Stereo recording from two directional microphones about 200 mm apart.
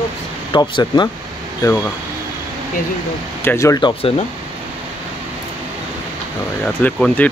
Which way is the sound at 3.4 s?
15° left (ahead or behind).